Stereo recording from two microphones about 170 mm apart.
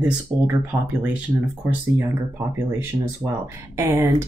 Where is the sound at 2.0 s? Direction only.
15° right (ahead or behind).